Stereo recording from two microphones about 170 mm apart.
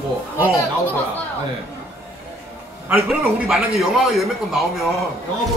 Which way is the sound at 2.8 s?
Centre (ahead or behind).